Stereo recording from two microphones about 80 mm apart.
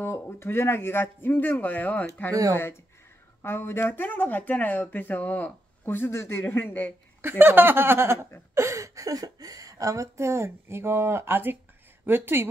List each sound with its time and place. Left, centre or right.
0.0 s speech: left
3.4 s speech: left
7.2 s speech: right
8.5 s a woman's voice: right